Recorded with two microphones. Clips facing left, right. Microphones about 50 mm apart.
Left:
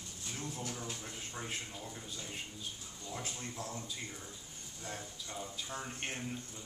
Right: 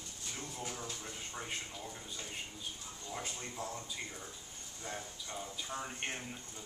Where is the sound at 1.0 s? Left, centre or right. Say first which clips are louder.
Even; centre.